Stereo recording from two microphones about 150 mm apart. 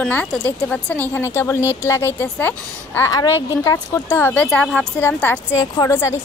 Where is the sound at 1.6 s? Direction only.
15° right (ahead or behind).